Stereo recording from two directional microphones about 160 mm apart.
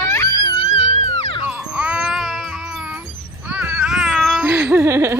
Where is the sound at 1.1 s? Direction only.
40° left (ahead or behind).